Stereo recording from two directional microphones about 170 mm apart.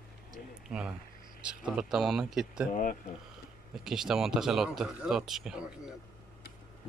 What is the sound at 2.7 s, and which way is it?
Speech, 50° left (ahead or behind).